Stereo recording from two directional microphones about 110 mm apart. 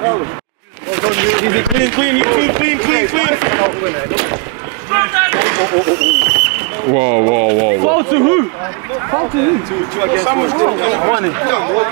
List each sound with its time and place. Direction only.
0.9 s speech: 20° right (ahead or behind)